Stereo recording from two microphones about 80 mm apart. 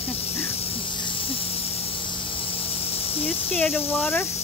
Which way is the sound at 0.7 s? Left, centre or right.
Left.